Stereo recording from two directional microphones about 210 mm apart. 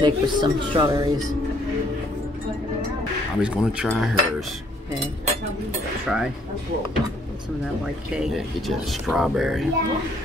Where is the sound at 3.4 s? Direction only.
5° right (ahead or behind).